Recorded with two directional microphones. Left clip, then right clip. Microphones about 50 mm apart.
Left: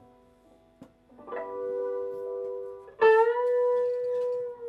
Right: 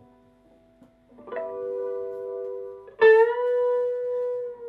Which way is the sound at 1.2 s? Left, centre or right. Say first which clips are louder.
Right 3 dB; centre.